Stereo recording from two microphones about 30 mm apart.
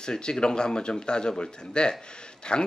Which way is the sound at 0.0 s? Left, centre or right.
Left.